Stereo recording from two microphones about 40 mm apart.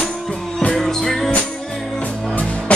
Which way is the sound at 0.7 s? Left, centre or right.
Centre.